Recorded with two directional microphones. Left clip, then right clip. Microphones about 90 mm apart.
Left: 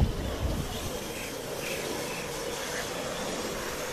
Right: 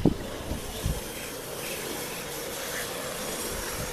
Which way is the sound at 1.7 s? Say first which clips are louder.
Left 2 dB; 35° left (ahead or behind).